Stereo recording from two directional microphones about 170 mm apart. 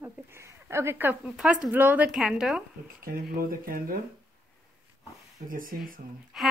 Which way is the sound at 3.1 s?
60° right (ahead or behind).